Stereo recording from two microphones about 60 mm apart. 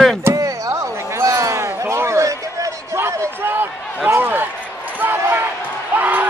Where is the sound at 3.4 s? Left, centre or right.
Right.